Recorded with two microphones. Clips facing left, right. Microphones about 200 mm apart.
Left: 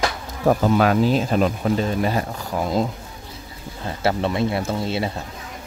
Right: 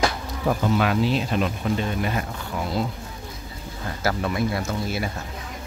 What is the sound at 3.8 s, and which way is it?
Speech, 25° left (ahead or behind).